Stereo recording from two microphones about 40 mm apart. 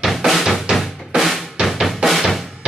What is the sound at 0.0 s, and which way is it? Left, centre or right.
Drum, centre.